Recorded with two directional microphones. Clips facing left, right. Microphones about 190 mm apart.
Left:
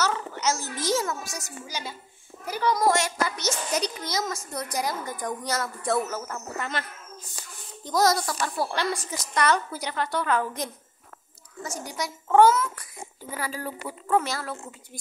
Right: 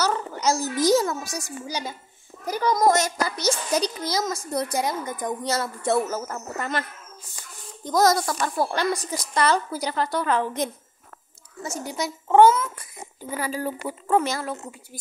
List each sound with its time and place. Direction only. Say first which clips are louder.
0.0 s a sound: right 3 dB; 35° right (ahead or behind)
0.7 s a child's voice: right 7 dB; 40° right (ahead or behind)
7.8 s a child's voice: right 3 dB; 50° right (ahead or behind)
9.3 s a child's voice: right 2 dB; 30° right (ahead or behind)